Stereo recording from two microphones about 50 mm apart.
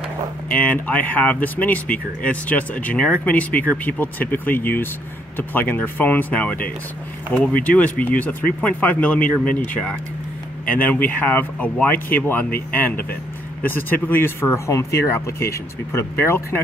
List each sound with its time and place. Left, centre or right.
0.5 s speech: left
10.7 s speech: left
14.7 s speech: left
15.2 s speech: left